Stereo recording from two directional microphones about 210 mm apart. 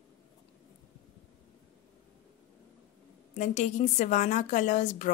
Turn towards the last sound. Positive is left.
turn(degrees=35)  # may be behind; listen again after turning